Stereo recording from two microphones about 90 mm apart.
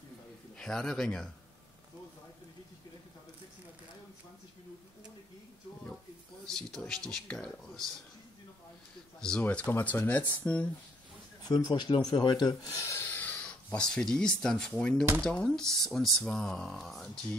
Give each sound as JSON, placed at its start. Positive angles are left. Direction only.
{"t": 0.6, "sound": "speech", "side_deg": 5}
{"t": 6.4, "sound": "speech", "side_deg": 5}
{"t": 9.2, "sound": "speech", "side_deg": 10}
{"t": 11.4, "sound": "a man's voice", "side_deg": 50}
{"t": 12.1, "sound": "a sound", "side_deg": 55}
{"t": 13.7, "sound": "speech", "side_deg": 10}